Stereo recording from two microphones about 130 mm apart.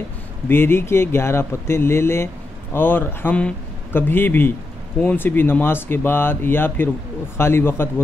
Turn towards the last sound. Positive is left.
turn(degrees=20)  # may be behind; listen again after turning